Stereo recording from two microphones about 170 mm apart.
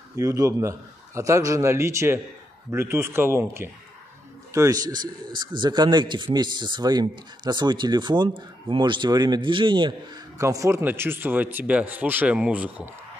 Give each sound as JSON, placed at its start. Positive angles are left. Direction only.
{"t": 0.1, "sound": "a man's voice", "side_deg": -20}